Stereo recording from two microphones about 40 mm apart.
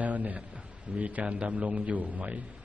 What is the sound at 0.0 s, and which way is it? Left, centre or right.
A man's voice, right.